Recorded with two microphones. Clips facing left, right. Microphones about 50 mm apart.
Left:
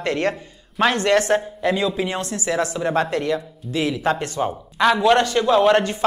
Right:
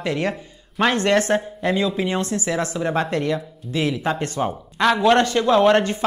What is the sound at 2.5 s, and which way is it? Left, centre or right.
A woman's voice, right.